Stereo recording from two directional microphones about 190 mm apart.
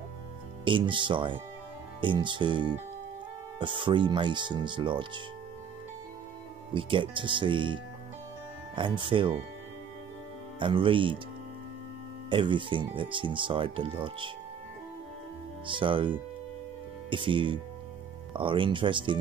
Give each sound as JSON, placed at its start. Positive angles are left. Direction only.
{"t": 0.7, "sound": "speech", "side_deg": -25}
{"t": 6.7, "sound": "speech", "side_deg": -25}
{"t": 10.6, "sound": "speech", "side_deg": -25}
{"t": 12.3, "sound": "speech", "side_deg": -25}
{"t": 15.6, "sound": "speech", "side_deg": -25}
{"t": 17.1, "sound": "speech", "side_deg": -25}